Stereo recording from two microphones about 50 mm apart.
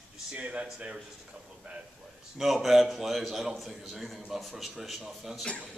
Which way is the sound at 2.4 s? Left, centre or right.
Centre.